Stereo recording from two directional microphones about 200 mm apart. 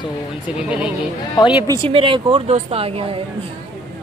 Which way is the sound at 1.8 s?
25° right (ahead or behind).